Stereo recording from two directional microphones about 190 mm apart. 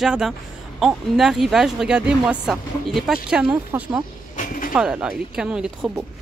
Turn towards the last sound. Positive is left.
turn(degrees=-5)  # may be behind; listen again after turning